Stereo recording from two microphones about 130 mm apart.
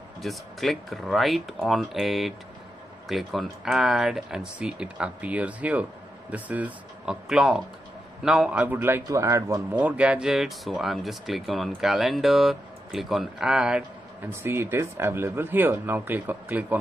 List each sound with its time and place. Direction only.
0.2 s speech: centre (ahead or behind); by 9.8 s 25° right (ahead or behind)
9.8 s speech: 10° right (ahead or behind)
14.4 s speech: 20° right (ahead or behind)